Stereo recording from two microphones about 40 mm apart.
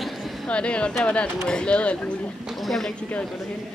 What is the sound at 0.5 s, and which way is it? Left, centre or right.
Speech, left.